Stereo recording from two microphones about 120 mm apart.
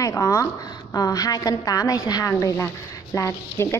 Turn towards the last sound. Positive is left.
turn(degrees=25)  # may be behind; listen again after turning